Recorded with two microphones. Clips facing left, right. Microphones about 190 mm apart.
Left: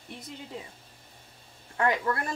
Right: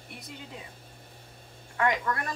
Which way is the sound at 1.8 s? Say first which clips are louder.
Left 1 dB; 30° left (ahead or behind).